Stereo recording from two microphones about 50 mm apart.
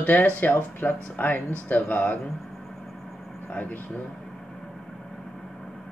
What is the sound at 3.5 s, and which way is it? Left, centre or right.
Speech, left.